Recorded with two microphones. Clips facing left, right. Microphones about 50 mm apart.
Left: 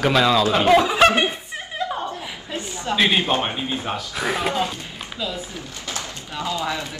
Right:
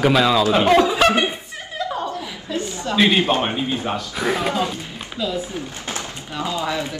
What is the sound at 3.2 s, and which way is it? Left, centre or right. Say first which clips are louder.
Speech: right 2 dB; right.